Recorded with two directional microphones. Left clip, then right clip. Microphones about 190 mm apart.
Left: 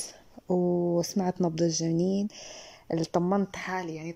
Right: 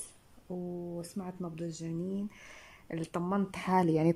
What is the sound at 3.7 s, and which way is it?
Speech, 35° right (ahead or behind).